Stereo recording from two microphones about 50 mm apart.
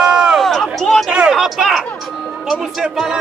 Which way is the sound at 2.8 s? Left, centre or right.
Centre.